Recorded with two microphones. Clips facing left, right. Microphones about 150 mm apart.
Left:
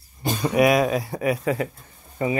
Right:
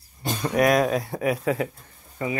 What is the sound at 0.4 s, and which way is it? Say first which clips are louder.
Speech: left 2 dB; 5° left (ahead or behind).